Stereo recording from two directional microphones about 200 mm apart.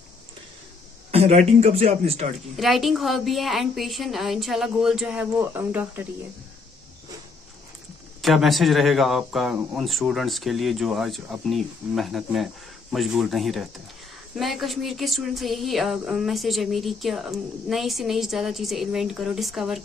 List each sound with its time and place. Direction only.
1.1 s a sound: 30° right (ahead or behind)
1.6 s speech: 30° right (ahead or behind)
2.5 s speech: centre (ahead or behind)
8.2 s speech: centre (ahead or behind)